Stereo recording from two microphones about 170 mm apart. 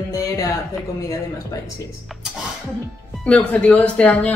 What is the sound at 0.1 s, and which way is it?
Music, 20° left (ahead or behind).